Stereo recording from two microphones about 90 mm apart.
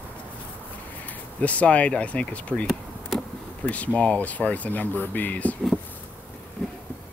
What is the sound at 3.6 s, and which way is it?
Speech, 15° left (ahead or behind).